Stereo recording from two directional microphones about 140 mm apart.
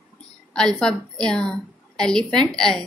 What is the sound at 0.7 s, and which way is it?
A woman's voice, 5° left (ahead or behind).